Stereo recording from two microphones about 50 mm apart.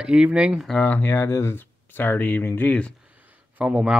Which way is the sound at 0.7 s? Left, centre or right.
Left.